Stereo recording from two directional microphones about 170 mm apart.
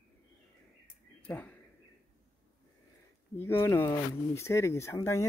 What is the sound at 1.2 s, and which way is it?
Speech, 10° left (ahead or behind).